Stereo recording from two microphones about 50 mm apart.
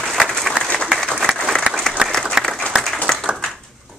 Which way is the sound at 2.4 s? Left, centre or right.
Centre.